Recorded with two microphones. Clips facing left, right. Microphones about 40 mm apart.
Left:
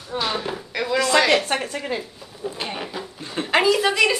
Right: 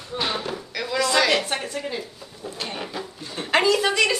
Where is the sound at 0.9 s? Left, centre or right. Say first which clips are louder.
Left 2 dB; left.